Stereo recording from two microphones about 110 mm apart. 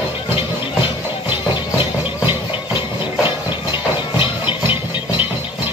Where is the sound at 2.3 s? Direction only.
45° left (ahead or behind).